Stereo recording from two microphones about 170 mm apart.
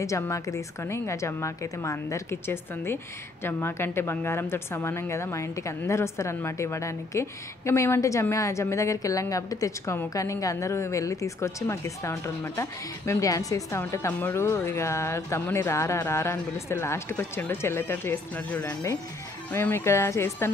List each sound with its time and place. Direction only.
0.0 s a woman's voice: 20° left (ahead or behind)